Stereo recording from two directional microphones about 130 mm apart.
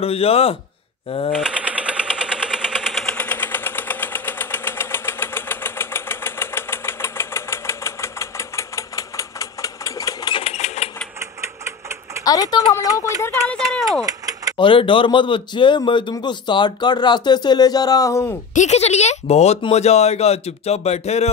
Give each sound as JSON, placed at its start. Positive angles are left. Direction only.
{"t": 0.0, "sound": "speech", "side_deg": 50}
{"t": 1.3, "sound": "a sound", "side_deg": -5}
{"t": 3.2, "sound": "engine", "side_deg": 15}
{"t": 10.3, "sound": "sewing machine", "side_deg": 50}
{"t": 11.1, "sound": "a sound", "side_deg": -20}
{"t": 12.3, "sound": "speech", "side_deg": 30}
{"t": 14.0, "sound": "a sound", "side_deg": -25}
{"t": 14.6, "sound": "a man's voice", "side_deg": 40}
{"t": 18.5, "sound": "speech", "side_deg": 65}